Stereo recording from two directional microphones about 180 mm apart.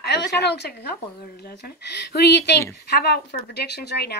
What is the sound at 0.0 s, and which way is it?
Speech, 70° left (ahead or behind).